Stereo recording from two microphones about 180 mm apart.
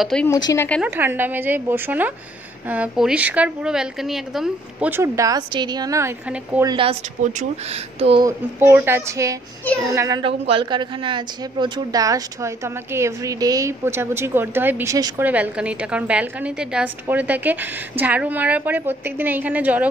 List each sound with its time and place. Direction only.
0.0 s speech: 5° left (ahead or behind)
0.3 s speech: 20° left (ahead or behind)
0.8 s a woman's voice: 10° right (ahead or behind)
6.6 s a child's voice: 25° right (ahead or behind)
8.3 s a woman's voice: 15° right (ahead or behind)
15.2 s a woman's voice: 10° right (ahead or behind)